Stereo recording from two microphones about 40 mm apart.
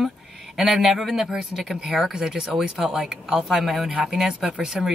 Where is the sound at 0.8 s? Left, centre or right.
Centre.